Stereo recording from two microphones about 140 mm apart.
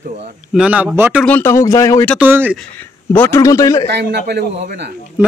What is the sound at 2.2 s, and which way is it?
Speech, 15° right (ahead or behind).